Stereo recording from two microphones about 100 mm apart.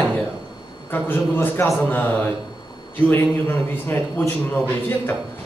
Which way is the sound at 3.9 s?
20° left (ahead or behind).